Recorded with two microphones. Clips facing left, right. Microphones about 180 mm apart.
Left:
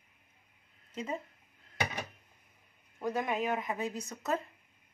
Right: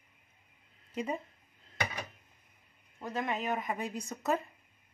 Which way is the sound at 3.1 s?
5° left (ahead or behind).